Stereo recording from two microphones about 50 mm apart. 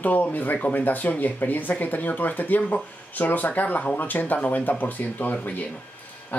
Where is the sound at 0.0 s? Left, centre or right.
Left.